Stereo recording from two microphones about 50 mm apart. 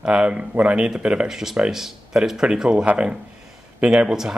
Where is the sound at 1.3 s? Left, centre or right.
Centre.